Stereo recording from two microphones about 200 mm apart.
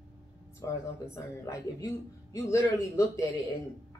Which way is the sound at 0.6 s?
15° left (ahead or behind).